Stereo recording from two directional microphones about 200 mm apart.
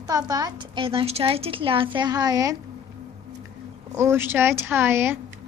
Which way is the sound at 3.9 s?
15° right (ahead or behind).